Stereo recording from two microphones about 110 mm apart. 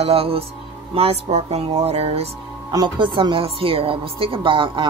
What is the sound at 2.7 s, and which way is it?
Speech, 40° right (ahead or behind).